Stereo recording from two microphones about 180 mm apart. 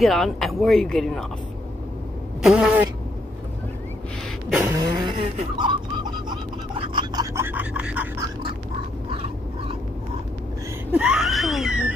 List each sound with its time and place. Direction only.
0.0 s speech: centre (ahead or behind)
2.4 s speech: centre (ahead or behind)
4.5 s vehicle: 5° right (ahead or behind)
4.7 s vehicle: 20° right (ahead or behind)
9.1 s dog: 30° right (ahead or behind)
10.9 s wheeze: 5° right (ahead or behind)